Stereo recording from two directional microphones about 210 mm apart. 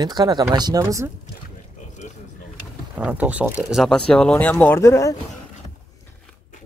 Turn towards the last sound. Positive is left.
turn(degrees=15)  # may be behind; listen again after turning